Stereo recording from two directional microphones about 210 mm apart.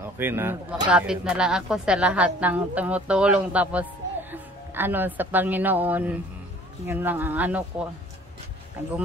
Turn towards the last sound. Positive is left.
turn(degrees=-5)  # may be behind; listen again after turning